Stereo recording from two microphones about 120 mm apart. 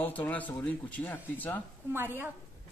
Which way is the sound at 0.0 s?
15° left (ahead or behind).